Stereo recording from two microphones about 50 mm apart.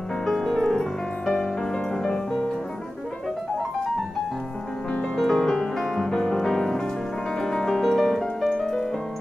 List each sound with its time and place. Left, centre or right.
0.2 s music: centre
5.1 s music: centre
7.3 s piano: centre